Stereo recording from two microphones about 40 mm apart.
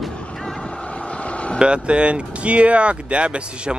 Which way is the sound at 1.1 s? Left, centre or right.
Left.